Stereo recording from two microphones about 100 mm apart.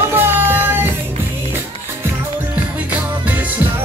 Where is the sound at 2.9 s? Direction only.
15° right (ahead or behind).